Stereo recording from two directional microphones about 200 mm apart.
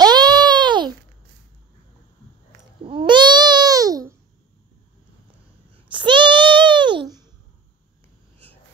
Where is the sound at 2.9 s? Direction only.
25° right (ahead or behind).